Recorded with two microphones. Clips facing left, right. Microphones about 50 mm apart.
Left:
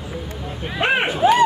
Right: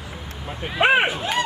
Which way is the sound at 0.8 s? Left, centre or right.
Centre.